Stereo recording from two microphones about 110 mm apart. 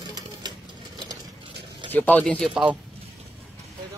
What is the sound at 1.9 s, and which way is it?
Speech, 15° left (ahead or behind).